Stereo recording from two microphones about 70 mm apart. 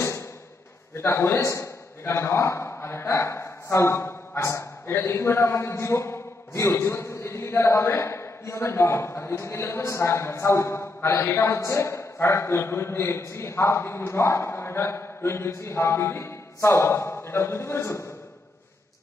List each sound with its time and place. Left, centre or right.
0.9 s a man's voice: left